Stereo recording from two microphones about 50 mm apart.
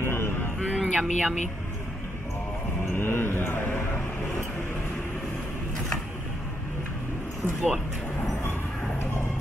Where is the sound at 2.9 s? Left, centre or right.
Left.